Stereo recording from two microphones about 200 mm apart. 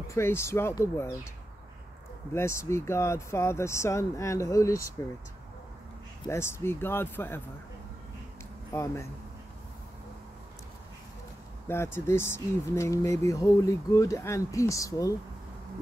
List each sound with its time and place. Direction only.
0.1 s speech: 10° left (ahead or behind)
2.3 s speech: 15° left (ahead or behind)
6.2 s speech: 15° left (ahead or behind)
8.7 s speech: 15° left (ahead or behind)
11.6 s speech: 10° left (ahead or behind)